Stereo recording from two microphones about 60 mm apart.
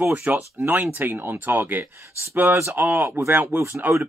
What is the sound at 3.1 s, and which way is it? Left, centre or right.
Speech, right.